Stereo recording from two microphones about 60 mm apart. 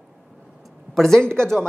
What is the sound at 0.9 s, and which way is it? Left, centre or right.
Speech, centre.